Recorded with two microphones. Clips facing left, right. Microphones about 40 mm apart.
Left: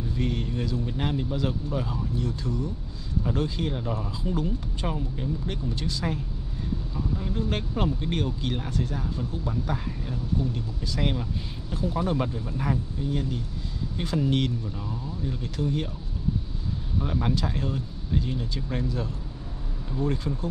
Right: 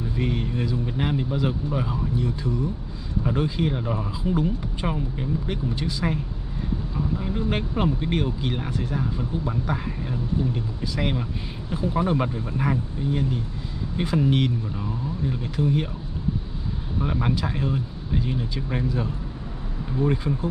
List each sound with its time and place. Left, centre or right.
0.1 s speech: centre
17.0 s speech: centre